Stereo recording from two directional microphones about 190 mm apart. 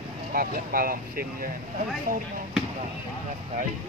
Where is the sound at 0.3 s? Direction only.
50° right (ahead or behind).